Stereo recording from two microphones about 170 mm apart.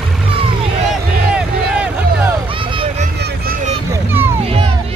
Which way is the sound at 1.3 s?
5° right (ahead or behind).